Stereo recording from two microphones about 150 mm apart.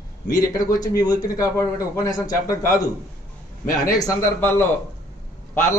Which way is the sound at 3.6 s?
75° left (ahead or behind).